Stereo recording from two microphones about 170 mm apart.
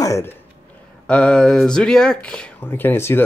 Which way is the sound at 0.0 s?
20° left (ahead or behind).